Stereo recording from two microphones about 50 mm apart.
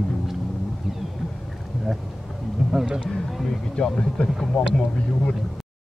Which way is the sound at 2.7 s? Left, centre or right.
Centre.